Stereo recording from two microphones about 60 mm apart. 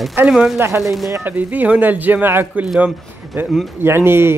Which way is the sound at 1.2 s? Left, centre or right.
Right.